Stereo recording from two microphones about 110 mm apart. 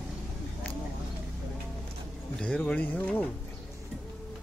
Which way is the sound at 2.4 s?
10° left (ahead or behind).